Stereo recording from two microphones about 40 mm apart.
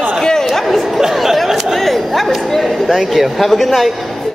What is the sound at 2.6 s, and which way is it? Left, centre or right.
Speech, centre.